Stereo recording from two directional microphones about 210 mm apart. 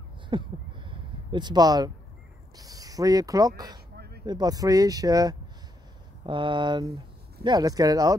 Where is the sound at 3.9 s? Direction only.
50° right (ahead or behind).